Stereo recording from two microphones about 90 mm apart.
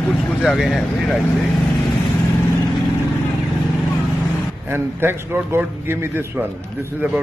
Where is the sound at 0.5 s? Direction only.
Centre (ahead or behind).